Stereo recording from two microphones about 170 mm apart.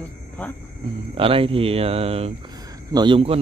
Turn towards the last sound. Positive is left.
turn(degrees=-30)  # may be behind; listen again after turning